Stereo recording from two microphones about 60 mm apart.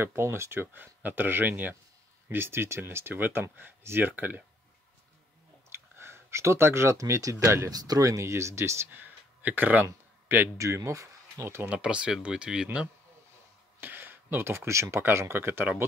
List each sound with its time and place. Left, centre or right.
0.0 s speech: right
2.2 s speech: right
5.7 s speech: right
7.7 s speech: right
8.9 s a sound: right
10.2 s a man's voice: right
10.6 s speech: right
11.4 s speech: right
11.7 s speech: centre
13.7 s speech: right